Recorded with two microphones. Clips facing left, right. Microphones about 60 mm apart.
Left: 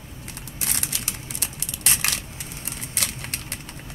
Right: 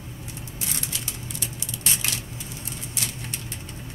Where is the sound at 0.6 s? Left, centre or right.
Left.